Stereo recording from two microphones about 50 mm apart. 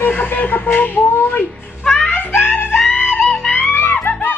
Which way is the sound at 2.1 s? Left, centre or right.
Left.